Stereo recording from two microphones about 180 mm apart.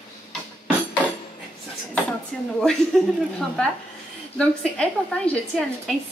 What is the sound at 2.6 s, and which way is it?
Speech, centre (ahead or behind).